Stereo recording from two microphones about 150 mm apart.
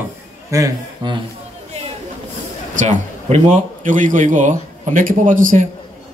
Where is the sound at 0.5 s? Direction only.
20° right (ahead or behind).